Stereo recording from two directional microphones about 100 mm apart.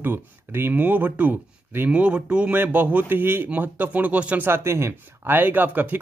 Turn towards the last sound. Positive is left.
turn(degrees=-20)  # may be behind; listen again after turning